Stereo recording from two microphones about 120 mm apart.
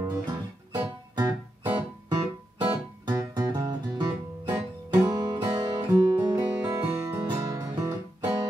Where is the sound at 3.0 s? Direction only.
35° right (ahead or behind).